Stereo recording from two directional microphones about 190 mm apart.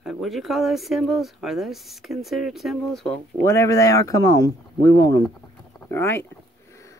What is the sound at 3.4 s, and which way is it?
Speech, 15° left (ahead or behind).